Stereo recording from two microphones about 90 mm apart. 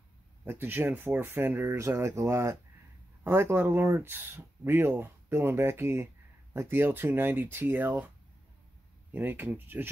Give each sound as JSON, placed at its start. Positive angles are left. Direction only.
{"t": 0.5, "sound": "speech", "side_deg": -25}
{"t": 9.1, "sound": "speech", "side_deg": -25}